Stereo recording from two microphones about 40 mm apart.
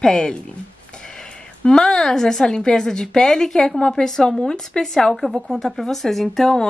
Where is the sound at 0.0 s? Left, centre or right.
Centre.